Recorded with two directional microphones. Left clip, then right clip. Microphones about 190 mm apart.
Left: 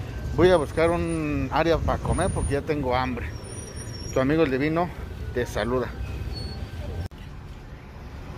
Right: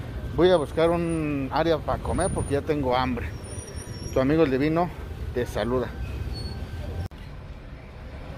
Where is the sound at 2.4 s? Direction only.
15° right (ahead or behind).